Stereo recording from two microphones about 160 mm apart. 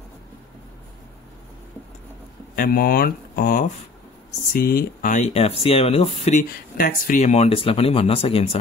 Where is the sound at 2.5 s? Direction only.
65° left (ahead or behind); by 6.4 s 40° left (ahead or behind).